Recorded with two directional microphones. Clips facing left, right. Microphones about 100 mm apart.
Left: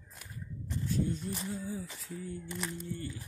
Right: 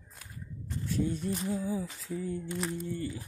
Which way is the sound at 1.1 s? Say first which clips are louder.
Right 4 dB; 80° right.